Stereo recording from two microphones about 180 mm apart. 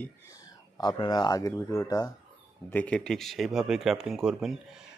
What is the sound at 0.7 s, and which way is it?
Speech, 25° left (ahead or behind).